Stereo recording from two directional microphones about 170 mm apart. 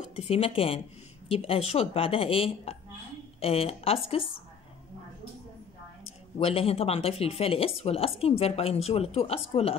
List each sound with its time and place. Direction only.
0.1 s a woman's voice: 35° left (ahead or behind)
6.4 s a woman's voice: 35° left (ahead or behind)